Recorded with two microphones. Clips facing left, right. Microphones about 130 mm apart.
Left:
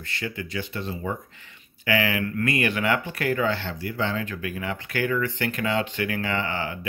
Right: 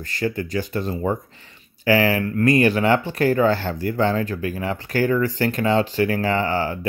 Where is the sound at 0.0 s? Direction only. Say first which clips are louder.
Right 8 dB; 40° right (ahead or behind).